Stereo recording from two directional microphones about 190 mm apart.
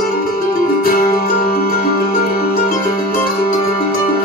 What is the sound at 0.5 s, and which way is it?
Music, 50° left (ahead or behind).